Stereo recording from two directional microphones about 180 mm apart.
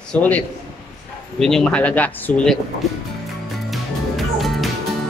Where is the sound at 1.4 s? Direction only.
5° left (ahead or behind).